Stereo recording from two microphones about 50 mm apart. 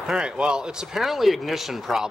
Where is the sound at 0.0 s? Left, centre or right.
Centre.